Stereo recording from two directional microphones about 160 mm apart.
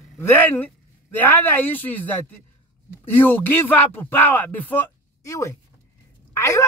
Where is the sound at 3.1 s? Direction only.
15° left (ahead or behind).